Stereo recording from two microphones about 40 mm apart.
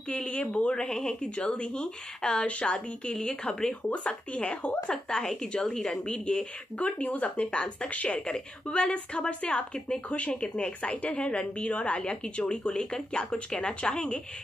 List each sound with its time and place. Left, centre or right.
0.1 s a woman's voice: left
0.7 s speech: centre
3.1 s a woman's voice: centre
3.9 s a woman's voice: left
5.5 s a woman's voice: centre
6.8 s a woman's voice: left
10.0 s a woman's voice: left
10.3 s a woman's voice: left
12.0 s speech: left